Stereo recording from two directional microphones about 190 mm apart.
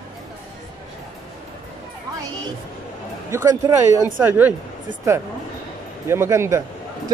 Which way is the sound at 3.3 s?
15° right (ahead or behind).